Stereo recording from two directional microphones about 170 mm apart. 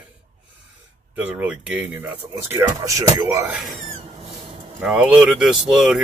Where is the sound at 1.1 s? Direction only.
10° right (ahead or behind).